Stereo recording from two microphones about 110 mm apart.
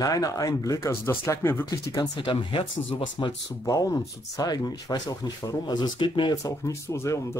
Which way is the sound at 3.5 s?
30° left (ahead or behind).